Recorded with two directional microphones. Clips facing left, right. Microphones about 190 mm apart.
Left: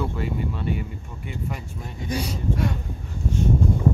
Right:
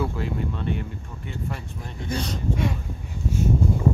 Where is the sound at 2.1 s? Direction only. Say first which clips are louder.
Left 1 dB; 10° left (ahead or behind).